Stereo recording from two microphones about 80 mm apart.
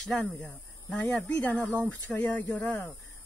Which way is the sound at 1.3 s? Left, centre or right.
Left.